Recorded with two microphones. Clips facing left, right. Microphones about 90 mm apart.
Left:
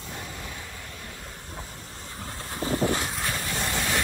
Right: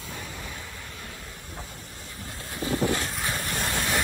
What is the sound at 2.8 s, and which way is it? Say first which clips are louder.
Vehicle: even; 20° left (ahead or behind).